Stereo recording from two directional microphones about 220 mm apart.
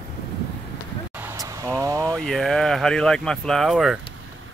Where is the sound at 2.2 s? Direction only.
Centre (ahead or behind).